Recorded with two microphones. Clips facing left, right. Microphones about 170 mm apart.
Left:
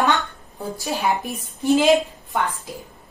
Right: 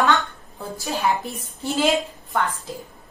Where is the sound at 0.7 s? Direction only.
20° left (ahead or behind).